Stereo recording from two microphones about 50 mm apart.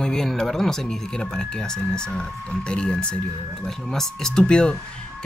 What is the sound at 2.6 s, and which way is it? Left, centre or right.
A man's voice, centre.